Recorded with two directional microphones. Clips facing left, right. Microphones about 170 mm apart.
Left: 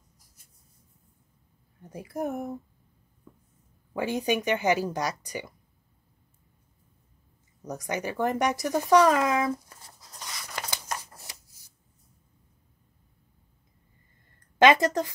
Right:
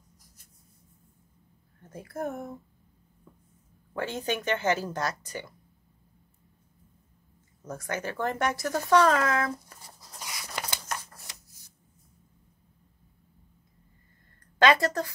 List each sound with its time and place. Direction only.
1.8 s speech: 15° left (ahead or behind)
3.9 s speech: 15° left (ahead or behind)
7.6 s speech: 15° left (ahead or behind)
9.9 s a sound: centre (ahead or behind)
10.9 s shuffling cards: 15° left (ahead or behind)
14.6 s a woman's voice: 20° left (ahead or behind)